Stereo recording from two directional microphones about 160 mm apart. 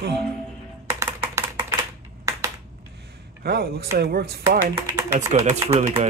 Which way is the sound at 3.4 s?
80° right.